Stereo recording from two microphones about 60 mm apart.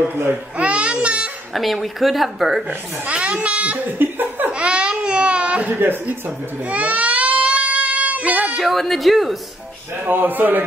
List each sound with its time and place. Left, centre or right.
0.6 s a sound: centre
1.5 s speech: centre
2.7 s a child's voice: right
4.5 s baby cry: centre
8.5 s speech: centre
10.0 s speech: right